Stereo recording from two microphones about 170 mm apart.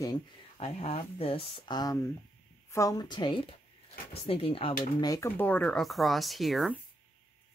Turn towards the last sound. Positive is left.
turn(degrees=0)  # may be behind; listen again after turning